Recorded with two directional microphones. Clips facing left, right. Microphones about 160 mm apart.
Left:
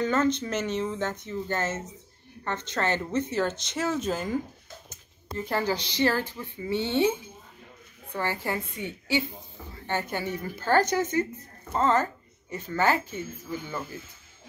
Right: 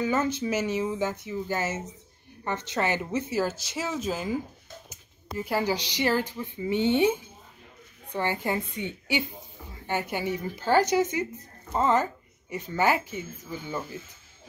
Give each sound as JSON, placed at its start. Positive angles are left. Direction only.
{"t": 0.0, "sound": "speech", "side_deg": -10}
{"t": 5.4, "sound": "a woman's voice", "side_deg": -10}